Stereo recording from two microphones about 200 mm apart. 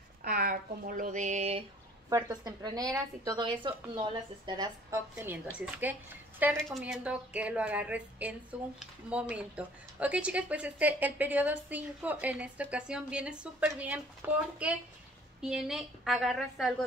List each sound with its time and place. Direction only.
0.2 s a sound: 50° right (ahead or behind); by 1.6 s 35° right (ahead or behind)
2.0 s a woman's voice: 20° right (ahead or behind)
6.5 s a woman's voice: centre (ahead or behind)